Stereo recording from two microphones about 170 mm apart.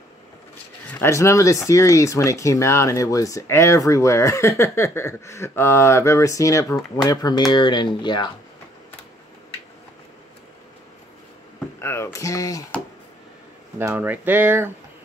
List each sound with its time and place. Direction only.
0.8 s speech: 10° left (ahead or behind)
11.8 s speech: 15° left (ahead or behind)
13.7 s speech: 10° right (ahead or behind)